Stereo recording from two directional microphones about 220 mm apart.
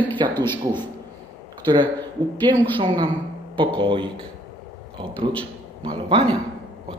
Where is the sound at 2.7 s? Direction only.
20° right (ahead or behind).